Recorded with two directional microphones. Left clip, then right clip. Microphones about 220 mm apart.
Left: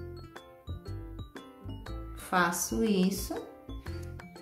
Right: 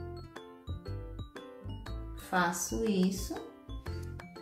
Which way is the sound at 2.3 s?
15° left (ahead or behind).